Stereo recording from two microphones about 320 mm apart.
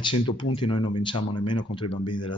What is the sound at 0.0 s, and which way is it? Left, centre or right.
Speech, centre.